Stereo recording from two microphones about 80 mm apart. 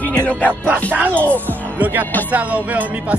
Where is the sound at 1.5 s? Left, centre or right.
Right.